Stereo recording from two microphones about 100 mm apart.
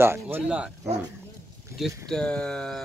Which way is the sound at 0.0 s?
25° right (ahead or behind).